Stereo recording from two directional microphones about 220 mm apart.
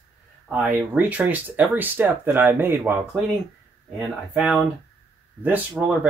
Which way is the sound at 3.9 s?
Centre (ahead or behind).